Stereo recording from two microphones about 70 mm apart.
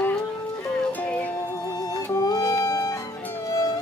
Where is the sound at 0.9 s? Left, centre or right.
Left.